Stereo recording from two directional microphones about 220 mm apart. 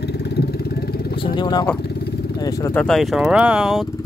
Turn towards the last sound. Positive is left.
turn(degrees=0)  # may be behind; listen again after turning